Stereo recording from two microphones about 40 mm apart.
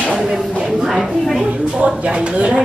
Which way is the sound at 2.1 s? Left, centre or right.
Right.